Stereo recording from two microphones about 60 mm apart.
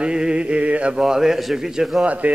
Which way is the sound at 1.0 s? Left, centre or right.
Centre.